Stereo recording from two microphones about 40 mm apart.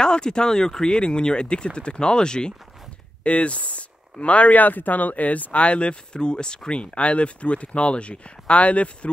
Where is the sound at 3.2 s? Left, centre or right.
Left.